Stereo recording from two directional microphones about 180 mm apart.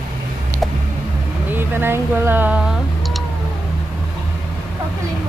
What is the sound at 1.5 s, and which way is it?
Speech, 10° right (ahead or behind).